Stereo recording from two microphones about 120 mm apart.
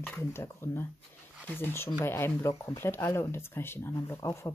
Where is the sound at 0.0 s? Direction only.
15° left (ahead or behind).